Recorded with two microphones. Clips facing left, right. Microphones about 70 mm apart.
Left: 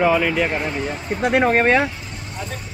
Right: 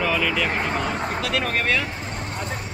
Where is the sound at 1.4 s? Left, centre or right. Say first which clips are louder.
Left 9 dB; left.